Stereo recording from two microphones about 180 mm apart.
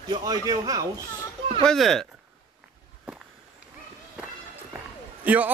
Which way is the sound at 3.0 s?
5° right (ahead or behind).